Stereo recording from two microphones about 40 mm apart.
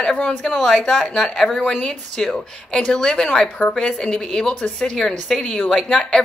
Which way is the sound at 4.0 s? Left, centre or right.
Left.